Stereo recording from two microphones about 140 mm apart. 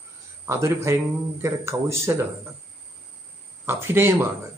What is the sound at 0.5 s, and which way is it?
Speech, 20° right (ahead or behind).